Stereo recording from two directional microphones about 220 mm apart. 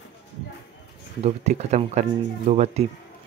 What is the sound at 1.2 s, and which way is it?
Speech, 30° right (ahead or behind).